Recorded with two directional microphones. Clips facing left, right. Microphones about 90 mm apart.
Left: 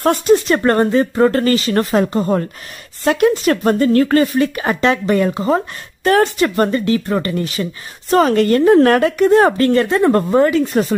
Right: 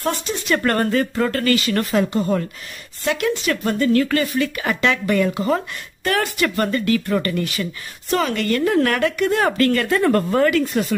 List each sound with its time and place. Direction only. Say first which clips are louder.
0.0 s speech: left 11 dB; 45° left (ahead or behind)
0.6 s speech: left 5 dB; 25° left (ahead or behind)
10.7 s speech: left 5 dB; 35° left (ahead or behind)